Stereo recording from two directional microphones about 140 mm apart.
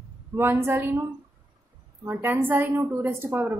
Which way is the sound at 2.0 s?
15° right (ahead or behind).